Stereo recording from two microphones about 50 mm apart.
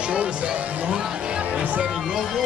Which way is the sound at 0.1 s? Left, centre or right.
Right.